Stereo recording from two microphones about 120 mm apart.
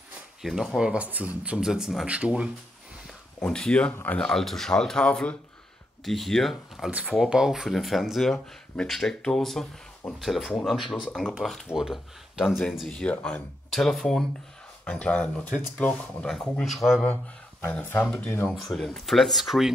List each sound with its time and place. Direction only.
0.4 s speech: 5° right (ahead or behind)
3.3 s speech: 10° left (ahead or behind)
6.9 s speech: 10° right (ahead or behind)
17.1 s speech: 15° left (ahead or behind)
18.8 s speech: centre (ahead or behind)